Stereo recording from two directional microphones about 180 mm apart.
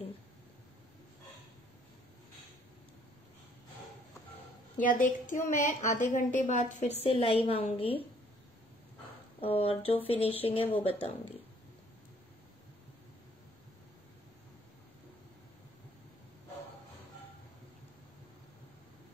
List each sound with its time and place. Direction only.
4.8 s a woman's voice: 45° left (ahead or behind)
7.0 s a woman's voice: 30° left (ahead or behind)
9.4 s a woman's voice: 30° left (ahead or behind)